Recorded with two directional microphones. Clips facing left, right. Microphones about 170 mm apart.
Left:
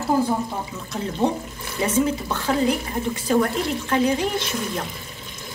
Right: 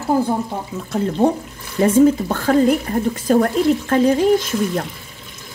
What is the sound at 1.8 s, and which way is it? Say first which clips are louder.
Speech: right 9 dB; 50° right (ahead or behind).